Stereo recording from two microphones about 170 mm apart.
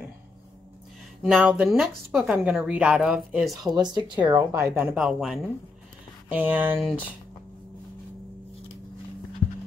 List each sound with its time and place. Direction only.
1.2 s speech: 10° right (ahead or behind)
3.7 s speech: 25° right (ahead or behind)
4.9 s speech: centre (ahead or behind)
6.3 s speech: 10° right (ahead or behind)